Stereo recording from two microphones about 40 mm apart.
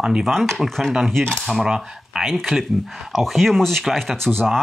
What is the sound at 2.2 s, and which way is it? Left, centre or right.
Speech, centre.